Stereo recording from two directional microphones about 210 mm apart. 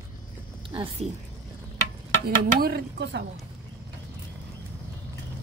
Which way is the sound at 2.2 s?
50° right (ahead or behind).